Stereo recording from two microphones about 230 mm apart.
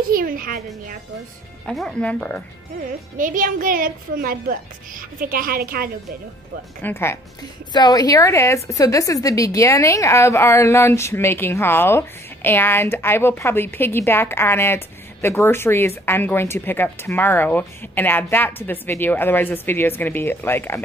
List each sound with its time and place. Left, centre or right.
0.1 s a woman's voice: right
1.7 s speech: centre
3.2 s a woman's voice: right
6.8 s a woman's voice: centre